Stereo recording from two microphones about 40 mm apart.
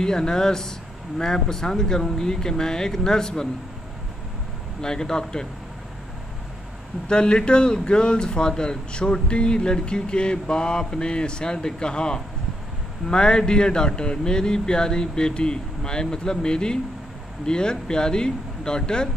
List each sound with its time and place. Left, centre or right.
0.0 s speech: centre
4.8 s speech: centre
7.1 s a man's voice: left